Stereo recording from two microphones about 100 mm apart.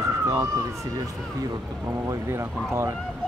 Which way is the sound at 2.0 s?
25° right (ahead or behind).